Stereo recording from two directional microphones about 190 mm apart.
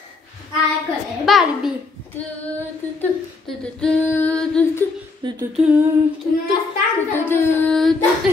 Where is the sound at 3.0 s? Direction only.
5° left (ahead or behind).